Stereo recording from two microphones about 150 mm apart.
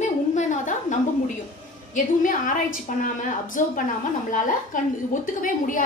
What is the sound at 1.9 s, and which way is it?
A woman's voice, 60° left (ahead or behind).